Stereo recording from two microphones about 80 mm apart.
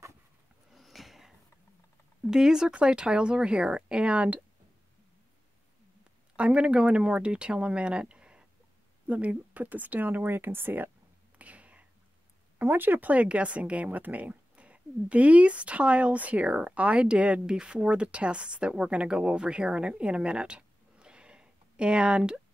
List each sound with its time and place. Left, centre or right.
0.7 s a sound: centre
2.3 s speech: centre
6.3 s speech: centre
11.3 s whispering: centre
12.5 s speech: right